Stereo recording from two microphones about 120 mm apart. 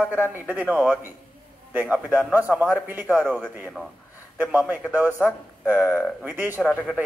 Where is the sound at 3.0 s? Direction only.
5° left (ahead or behind).